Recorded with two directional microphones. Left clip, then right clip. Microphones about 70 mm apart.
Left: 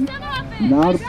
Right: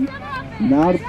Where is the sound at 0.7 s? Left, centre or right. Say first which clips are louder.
Even; right.